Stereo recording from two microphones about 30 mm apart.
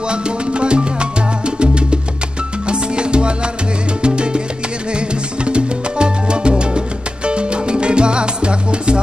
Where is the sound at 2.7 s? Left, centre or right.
Right.